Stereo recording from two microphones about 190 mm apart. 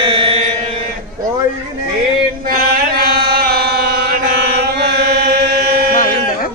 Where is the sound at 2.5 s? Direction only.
50° right (ahead or behind).